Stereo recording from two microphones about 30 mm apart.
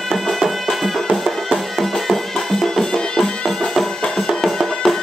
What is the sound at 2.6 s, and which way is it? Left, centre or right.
Music, centre.